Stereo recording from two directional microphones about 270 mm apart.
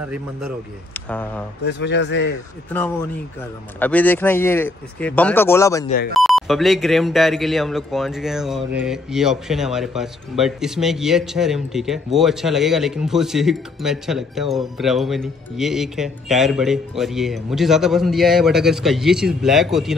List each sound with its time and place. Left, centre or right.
0.9 s speech: centre
1.6 s a man's voice: left
3.8 s speech: centre
6.1 s speech: centre